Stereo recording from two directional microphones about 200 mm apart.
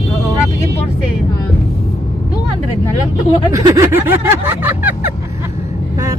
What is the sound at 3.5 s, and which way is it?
Speech, 15° right (ahead or behind).